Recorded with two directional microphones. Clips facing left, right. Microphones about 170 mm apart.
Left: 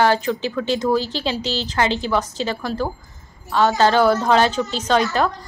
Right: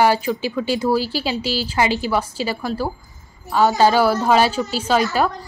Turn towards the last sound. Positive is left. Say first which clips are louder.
# even
turn(degrees=-5)  # may be behind; listen again after turning